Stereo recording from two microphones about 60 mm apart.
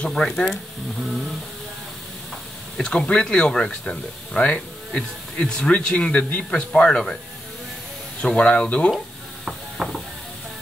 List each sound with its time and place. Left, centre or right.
0.0 s speech: centre
2.8 s speech: centre
8.2 s speech: centre
9.5 s ratchet: centre